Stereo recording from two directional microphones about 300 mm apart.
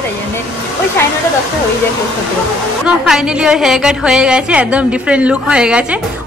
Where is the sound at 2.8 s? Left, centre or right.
Centre.